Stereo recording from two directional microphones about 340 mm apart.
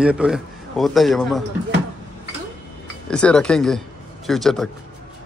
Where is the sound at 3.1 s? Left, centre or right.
Centre.